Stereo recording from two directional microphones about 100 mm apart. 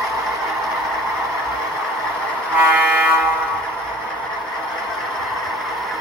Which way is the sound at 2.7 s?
20° right (ahead or behind).